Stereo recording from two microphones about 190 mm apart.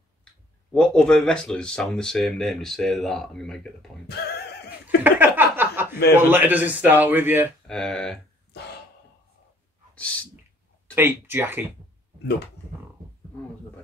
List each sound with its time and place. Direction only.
0.7 s speech: 5° left (ahead or behind)
4.1 s neigh: 60° left (ahead or behind)
4.8 s chuckle: 10° right (ahead or behind)
6.1 s a man's voice: 10° right (ahead or behind)
7.6 s speech: 5° left (ahead or behind)
9.9 s a sound: 5° left (ahead or behind)
11.0 s a man's voice: 10° right (ahead or behind)